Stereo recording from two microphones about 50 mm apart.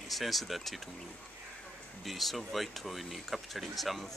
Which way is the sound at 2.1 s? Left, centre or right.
Centre.